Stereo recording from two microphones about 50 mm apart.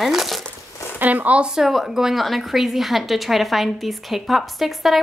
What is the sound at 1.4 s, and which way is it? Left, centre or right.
Speech, centre.